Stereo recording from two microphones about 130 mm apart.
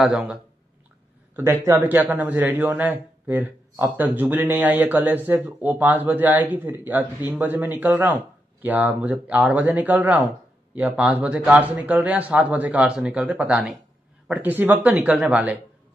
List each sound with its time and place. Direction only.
0.0 s a man's voice: 10° right (ahead or behind)
1.3 s a man's voice: 20° right (ahead or behind)